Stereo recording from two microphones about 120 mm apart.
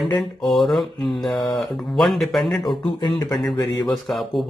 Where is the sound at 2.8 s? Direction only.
40° left (ahead or behind).